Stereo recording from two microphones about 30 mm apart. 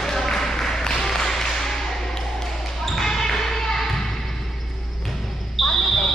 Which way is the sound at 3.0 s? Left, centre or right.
Centre.